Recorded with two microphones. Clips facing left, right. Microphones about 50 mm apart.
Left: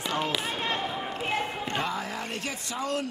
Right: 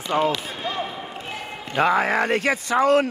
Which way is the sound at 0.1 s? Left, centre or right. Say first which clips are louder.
Right 10 dB; right.